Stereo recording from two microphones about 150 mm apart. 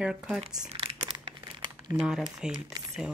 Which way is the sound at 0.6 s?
40° right (ahead or behind).